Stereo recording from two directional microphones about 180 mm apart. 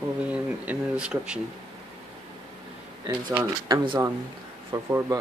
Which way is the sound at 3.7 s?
20° right (ahead or behind).